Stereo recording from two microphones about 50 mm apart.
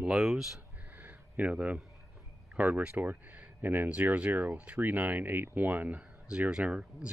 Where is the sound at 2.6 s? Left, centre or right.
Right.